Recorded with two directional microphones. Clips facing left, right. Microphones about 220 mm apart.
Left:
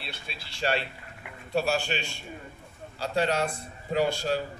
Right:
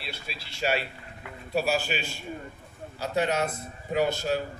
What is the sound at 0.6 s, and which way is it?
A man's voice, 10° right (ahead or behind).